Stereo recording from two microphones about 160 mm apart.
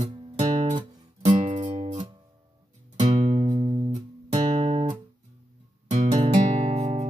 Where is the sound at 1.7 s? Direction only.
40° right (ahead or behind).